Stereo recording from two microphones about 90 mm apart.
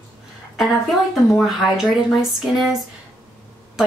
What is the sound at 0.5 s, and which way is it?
Speech, centre (ahead or behind).